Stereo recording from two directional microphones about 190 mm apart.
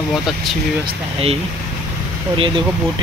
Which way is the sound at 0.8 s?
30° right (ahead or behind).